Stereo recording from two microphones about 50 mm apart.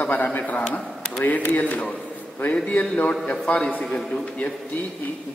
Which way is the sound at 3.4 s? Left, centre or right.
Left.